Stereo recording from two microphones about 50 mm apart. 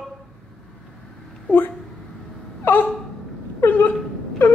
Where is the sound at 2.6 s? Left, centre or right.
Left.